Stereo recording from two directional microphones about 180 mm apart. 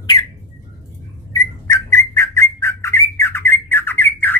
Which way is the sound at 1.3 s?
15° left (ahead or behind).